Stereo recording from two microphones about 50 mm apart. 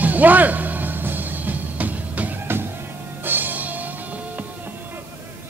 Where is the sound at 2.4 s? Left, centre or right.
Right.